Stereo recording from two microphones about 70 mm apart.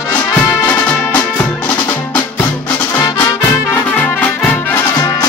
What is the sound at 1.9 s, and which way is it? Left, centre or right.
Music, left.